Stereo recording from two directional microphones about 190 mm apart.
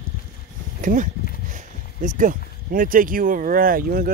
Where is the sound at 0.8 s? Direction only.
40° right (ahead or behind).